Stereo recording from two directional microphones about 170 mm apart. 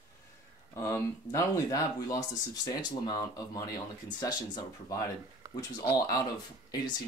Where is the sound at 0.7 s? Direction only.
15° left (ahead or behind).